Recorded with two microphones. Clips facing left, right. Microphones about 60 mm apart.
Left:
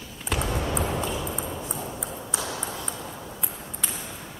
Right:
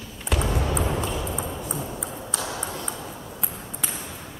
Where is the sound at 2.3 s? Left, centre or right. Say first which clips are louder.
Right 1 dB; centre.